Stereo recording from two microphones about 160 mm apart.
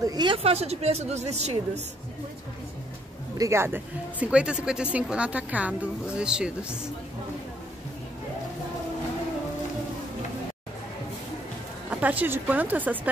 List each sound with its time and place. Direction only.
0.0 s a woman's voice: 25° right (ahead or behind); by 1.6 s 45° right (ahead or behind)
3.3 s a woman's voice: 20° right (ahead or behind)
11.9 s a woman's voice: 10° right (ahead or behind)